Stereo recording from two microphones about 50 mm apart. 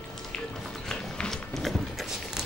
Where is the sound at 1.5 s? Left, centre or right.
Centre.